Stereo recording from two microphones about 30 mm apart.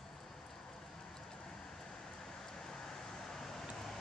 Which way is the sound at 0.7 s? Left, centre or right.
Centre.